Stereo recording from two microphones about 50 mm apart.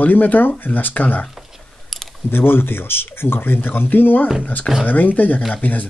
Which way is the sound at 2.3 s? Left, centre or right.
Left.